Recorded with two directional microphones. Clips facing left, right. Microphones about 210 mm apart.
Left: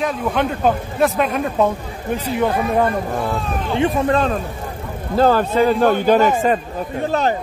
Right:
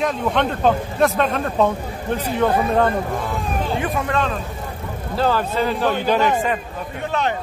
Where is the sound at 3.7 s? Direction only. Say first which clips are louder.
Left 8 dB; 30° left (ahead or behind).